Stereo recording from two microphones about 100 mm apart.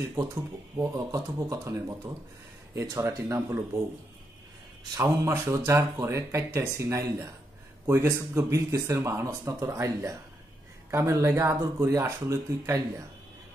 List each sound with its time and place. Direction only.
0.7 s speech: 35° right (ahead or behind)
4.9 s speech: 30° right (ahead or behind)